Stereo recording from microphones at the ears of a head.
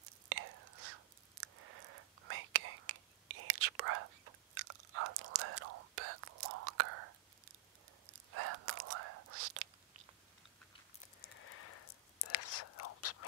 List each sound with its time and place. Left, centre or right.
0.0 s whispering: right
11.1 s whispering: left